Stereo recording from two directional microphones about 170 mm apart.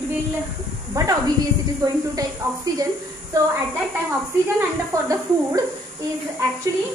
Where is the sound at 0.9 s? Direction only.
20° right (ahead or behind).